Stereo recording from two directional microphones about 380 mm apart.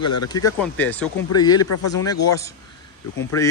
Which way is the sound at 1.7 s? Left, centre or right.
Left.